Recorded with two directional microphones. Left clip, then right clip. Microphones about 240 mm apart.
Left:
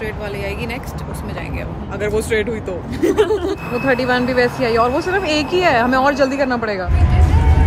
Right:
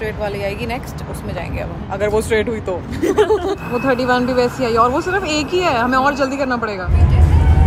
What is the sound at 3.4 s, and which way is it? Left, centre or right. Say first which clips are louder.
Speech: even; centre.